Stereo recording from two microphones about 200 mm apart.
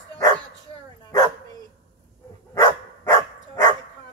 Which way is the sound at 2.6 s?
20° left (ahead or behind).